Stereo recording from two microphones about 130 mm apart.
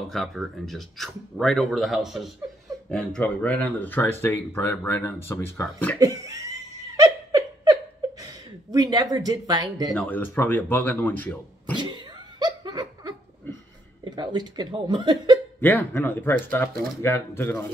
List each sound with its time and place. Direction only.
0.1 s speech: centre (ahead or behind)
5.9 s speech: 25° right (ahead or behind)
7.6 s chuckle: 30° right (ahead or behind)
9.9 s speech: 10° left (ahead or behind)
11.7 s laughter: 35° right (ahead or behind)
13.5 s a sound: 15° left (ahead or behind)
14.0 s speech: 35° right (ahead or behind)
15.6 s speech: 15° left (ahead or behind)